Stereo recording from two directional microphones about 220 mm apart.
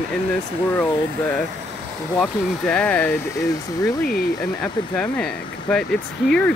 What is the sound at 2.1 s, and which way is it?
Speech, 5° left (ahead or behind).